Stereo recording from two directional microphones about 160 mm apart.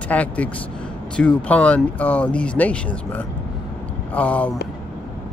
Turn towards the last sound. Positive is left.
turn(degrees=10)  # may be behind; listen again after turning